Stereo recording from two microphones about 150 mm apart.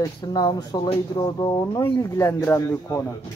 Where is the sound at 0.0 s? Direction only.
25° left (ahead or behind).